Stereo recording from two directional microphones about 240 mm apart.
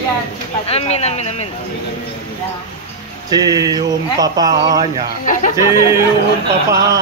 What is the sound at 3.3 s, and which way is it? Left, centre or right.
Speech, centre.